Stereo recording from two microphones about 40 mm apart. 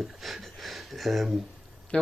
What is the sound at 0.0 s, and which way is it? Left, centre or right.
Speech, centre.